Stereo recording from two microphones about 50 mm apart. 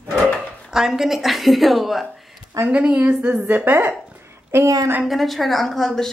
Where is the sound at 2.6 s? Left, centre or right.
Right.